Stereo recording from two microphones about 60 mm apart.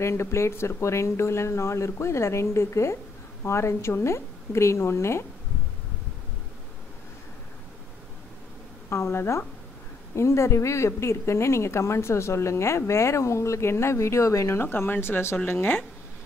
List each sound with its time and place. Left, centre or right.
0.0 s a woman's voice: left
8.9 s a woman's voice: left